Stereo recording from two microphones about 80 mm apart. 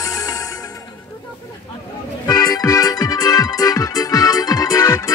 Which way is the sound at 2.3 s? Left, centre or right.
Left.